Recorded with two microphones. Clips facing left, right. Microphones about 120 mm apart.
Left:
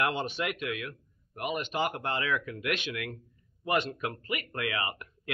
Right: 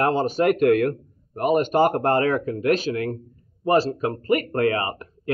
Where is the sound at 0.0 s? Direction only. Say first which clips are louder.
Right 11 dB; 40° right (ahead or behind).